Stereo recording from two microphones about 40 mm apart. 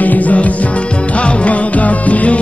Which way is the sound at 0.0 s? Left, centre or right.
Left.